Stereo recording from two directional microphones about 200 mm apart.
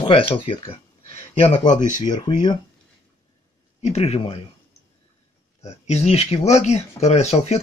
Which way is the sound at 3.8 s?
30° left (ahead or behind).